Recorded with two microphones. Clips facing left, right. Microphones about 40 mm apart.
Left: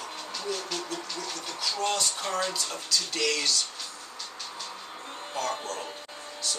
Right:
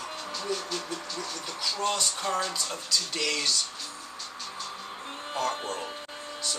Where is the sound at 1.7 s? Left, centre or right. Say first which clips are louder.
Even; centre.